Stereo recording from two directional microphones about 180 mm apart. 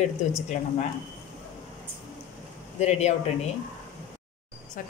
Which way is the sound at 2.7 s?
35° left (ahead or behind).